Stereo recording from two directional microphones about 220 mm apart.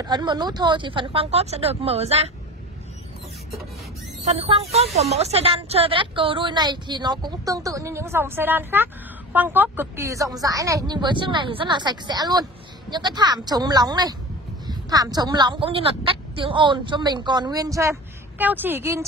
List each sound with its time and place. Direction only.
0.0 s speech: 20° right (ahead or behind)
4.3 s a woman's voice: 25° right (ahead or behind); by 19.0 s 10° right (ahead or behind)